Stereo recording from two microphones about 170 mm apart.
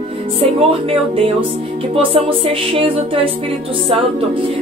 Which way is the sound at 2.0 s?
30° right (ahead or behind).